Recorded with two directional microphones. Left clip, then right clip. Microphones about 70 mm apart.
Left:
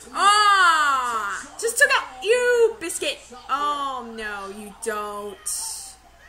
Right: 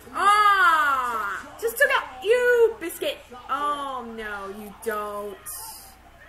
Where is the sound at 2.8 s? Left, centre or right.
Centre.